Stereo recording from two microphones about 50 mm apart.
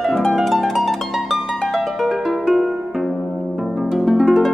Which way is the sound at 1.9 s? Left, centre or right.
Centre.